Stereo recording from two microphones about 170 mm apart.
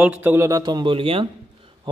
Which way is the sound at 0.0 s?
10° right (ahead or behind).